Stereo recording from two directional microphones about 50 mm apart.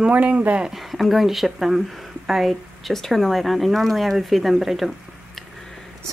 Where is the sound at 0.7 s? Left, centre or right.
Centre.